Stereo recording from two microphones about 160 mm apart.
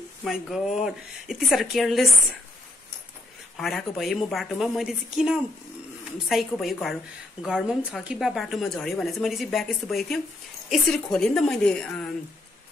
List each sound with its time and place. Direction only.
0.2 s speech: centre (ahead or behind)
3.5 s speech: centre (ahead or behind)